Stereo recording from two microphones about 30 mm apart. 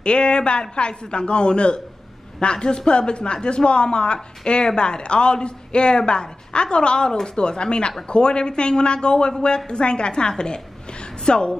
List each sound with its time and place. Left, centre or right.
0.0 s a woman's voice: left